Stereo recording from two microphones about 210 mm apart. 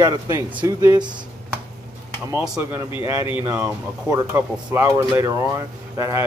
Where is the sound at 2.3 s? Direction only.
5° right (ahead or behind).